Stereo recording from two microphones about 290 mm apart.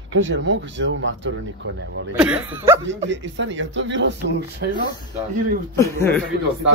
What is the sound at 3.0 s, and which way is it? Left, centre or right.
Speech, right.